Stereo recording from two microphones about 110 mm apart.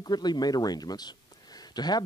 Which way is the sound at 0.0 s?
40° left (ahead or behind).